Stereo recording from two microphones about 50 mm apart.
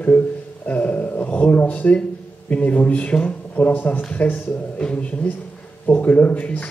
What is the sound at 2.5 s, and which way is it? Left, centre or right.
Speech, left.